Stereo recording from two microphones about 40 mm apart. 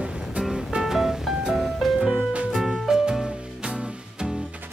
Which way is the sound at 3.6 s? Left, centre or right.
Right.